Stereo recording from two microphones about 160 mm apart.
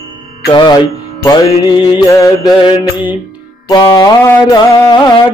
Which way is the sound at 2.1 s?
20° left (ahead or behind).